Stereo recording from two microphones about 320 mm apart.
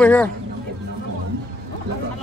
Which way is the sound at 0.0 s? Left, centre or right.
Centre.